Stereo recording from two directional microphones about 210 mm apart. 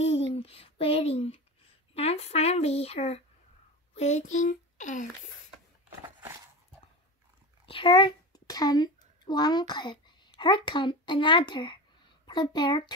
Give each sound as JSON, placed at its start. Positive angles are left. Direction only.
{"t": 0.0, "sound": "a sound", "side_deg": 30}
{"t": 2.0, "sound": "speech", "side_deg": 30}
{"t": 7.6, "sound": "a child's voice", "side_deg": 25}